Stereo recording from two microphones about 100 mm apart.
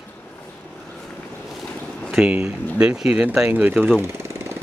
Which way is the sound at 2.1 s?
10° right (ahead or behind).